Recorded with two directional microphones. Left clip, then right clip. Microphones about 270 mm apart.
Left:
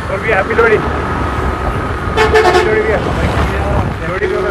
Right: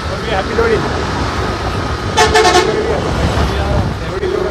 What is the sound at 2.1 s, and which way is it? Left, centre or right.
Speech, right.